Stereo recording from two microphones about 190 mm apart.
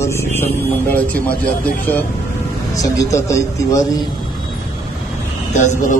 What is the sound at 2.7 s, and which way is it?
A man's voice, 15° left (ahead or behind).